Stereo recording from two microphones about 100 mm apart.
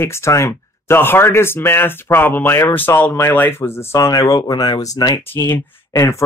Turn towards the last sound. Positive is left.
turn(degrees=25)  # may be behind; listen again after turning